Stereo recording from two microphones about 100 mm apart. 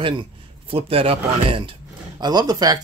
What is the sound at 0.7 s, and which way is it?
Speech, 70° right (ahead or behind).